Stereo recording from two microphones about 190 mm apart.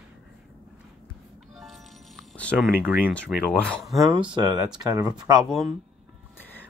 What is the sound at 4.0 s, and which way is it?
Speech, 20° right (ahead or behind).